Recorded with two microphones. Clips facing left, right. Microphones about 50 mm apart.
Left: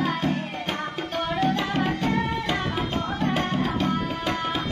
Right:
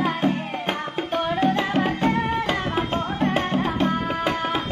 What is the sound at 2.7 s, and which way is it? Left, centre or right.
Tabla, right.